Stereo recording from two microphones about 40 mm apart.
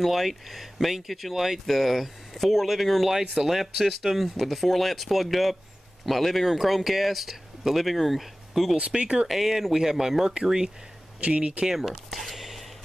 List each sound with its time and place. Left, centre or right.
0.0 s speech: centre
8.9 s speech: right
9.3 s speech: centre
11.1 s speech: right
11.6 s speech: centre
11.9 s speech: centre
12.4 s whispering: centre